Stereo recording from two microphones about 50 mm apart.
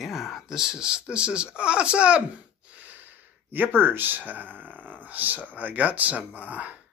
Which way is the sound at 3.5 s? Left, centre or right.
Right.